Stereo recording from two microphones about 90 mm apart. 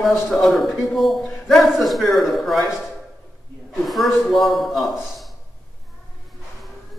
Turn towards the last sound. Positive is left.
turn(degrees=0)  # may be behind; listen again after turning